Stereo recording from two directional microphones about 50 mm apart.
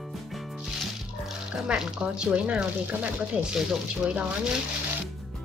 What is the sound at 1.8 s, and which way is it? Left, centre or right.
Speech, centre.